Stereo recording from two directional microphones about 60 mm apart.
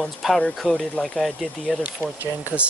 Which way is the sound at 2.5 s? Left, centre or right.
Right.